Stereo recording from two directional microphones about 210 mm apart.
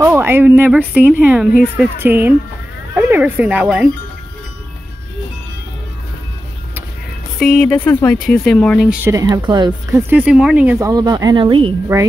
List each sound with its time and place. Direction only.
0.0 s speech: 10° right (ahead or behind)
7.3 s speech: centre (ahead or behind)
9.0 s speech: 15° right (ahead or behind)
10.9 s speech: 20° right (ahead or behind)